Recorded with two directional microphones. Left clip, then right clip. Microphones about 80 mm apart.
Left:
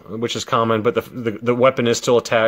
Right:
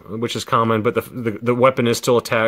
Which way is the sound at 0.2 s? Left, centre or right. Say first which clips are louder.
Even; right.